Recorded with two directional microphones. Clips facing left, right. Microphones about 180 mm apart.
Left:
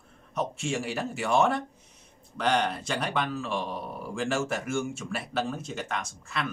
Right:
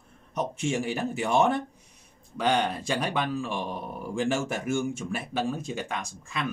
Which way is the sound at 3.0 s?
15° right (ahead or behind).